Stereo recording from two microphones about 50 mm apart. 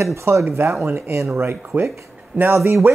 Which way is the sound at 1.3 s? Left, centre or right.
Right.